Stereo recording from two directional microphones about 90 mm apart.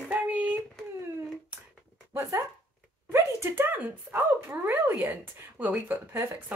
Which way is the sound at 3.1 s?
25° right (ahead or behind).